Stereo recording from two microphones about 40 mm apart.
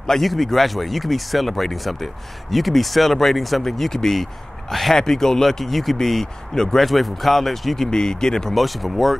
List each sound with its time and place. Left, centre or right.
0.0 s speech: centre
6.9 s speech: centre
7.9 s speech: centre
8.5 s speech: centre